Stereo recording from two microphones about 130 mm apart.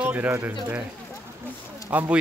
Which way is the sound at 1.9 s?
10° right (ahead or behind).